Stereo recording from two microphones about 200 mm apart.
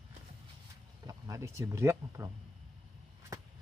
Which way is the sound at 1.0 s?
15° right (ahead or behind).